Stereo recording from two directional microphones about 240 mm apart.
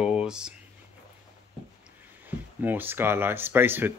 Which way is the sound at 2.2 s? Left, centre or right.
Centre.